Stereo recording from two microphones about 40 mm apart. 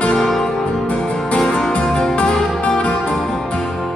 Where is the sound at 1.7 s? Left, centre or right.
Left.